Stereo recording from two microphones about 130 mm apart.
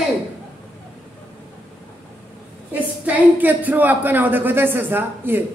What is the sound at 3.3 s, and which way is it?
A man's voice, 15° right (ahead or behind).